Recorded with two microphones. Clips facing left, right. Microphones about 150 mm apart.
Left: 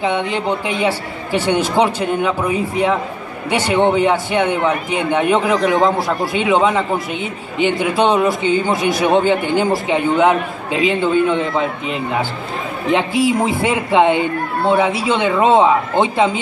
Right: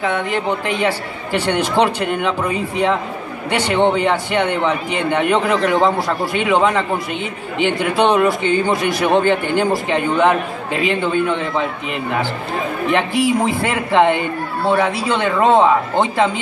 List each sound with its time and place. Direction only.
0.0 s a man's voice: 20° left (ahead or behind)
10.7 s a man's voice: 60° right (ahead or behind)
11.0 s a man's voice: 15° left (ahead or behind)
12.9 s a man's voice: 10° left (ahead or behind)